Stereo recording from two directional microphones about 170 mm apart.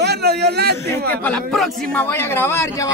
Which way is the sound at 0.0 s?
70° right (ahead or behind).